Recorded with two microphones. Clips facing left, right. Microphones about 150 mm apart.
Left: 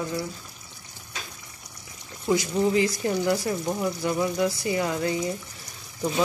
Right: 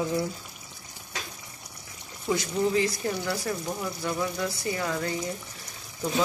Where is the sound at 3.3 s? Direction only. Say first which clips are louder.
Left 5 dB; 15° left (ahead or behind).